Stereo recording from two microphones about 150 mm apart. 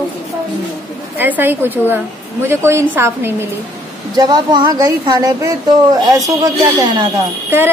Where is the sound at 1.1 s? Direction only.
15° right (ahead or behind).